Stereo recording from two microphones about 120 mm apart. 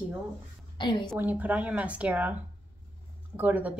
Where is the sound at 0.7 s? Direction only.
40° left (ahead or behind).